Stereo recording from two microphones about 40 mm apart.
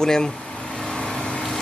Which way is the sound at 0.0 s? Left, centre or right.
Centre.